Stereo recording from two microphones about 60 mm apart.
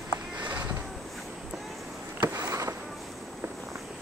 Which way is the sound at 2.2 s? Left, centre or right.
Right.